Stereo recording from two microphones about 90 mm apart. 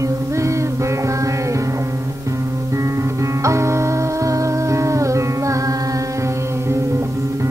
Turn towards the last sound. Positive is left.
turn(degrees=-40)  # may be behind; listen again after turning